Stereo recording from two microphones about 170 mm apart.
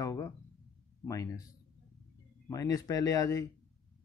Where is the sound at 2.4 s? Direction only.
20° left (ahead or behind).